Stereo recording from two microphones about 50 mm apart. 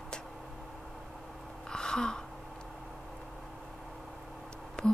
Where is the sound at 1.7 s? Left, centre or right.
Centre.